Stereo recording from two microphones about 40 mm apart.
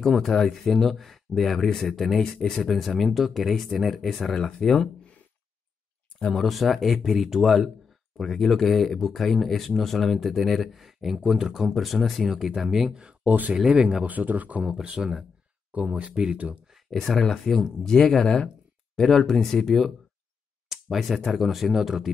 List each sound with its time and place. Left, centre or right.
0.0 s speech: centre
2.3 s speech: centre
2.6 s speech: centre
6.3 s speech: centre
7.4 s speech: centre
11.6 s speech: centre
13.3 s speech: right
13.7 s speech: right
14.0 s speech: right
14.6 s speech: right
15.7 s speech: right
16.9 s speech: centre
20.6 s a sound: centre
21.3 s speech: centre